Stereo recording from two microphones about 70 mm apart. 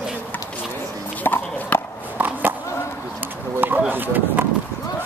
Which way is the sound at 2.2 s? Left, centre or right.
Right.